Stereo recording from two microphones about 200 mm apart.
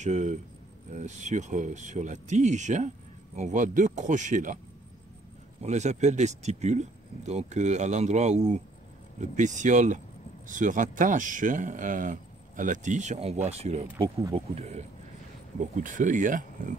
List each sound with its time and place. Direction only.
0.0 s speech: 35° right (ahead or behind)
5.6 s speech: 35° right (ahead or behind)